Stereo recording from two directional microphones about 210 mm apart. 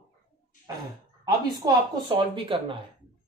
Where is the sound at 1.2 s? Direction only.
20° right (ahead or behind).